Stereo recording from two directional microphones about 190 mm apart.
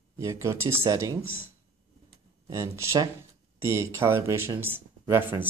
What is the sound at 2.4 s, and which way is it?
Speech, 15° right (ahead or behind).